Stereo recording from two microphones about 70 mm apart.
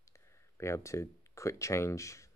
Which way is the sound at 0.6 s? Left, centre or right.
Left.